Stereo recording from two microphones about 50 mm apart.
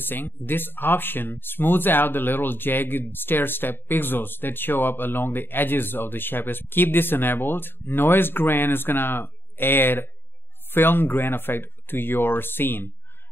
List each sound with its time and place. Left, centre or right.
0.0 s speech: left